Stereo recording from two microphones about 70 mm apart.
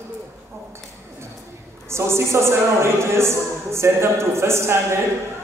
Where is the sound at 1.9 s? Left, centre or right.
Right.